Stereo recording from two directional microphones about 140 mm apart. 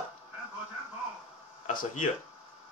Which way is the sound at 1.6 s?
75° left (ahead or behind).